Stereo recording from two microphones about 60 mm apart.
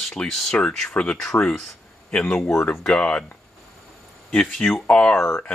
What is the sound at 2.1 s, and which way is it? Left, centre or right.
Speech, left.